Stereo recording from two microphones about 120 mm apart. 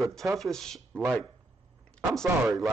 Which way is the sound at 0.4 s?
5° left (ahead or behind).